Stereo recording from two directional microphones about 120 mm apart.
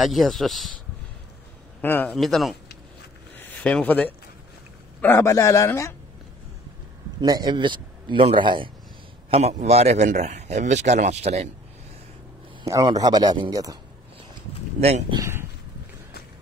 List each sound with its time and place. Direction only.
0.0 s speech: centre (ahead or behind)
1.8 s a man's voice: 15° left (ahead or behind)
2.1 s speech: centre (ahead or behind)
3.3 s a sound: 15° left (ahead or behind)
5.0 s a man's voice: 20° left (ahead or behind)
7.2 s a man's voice: 35° right (ahead or behind)
9.3 s speech: 65° right (ahead or behind)
12.6 s a man's voice: 30° right (ahead or behind)
14.8 s speech: 60° right (ahead or behind)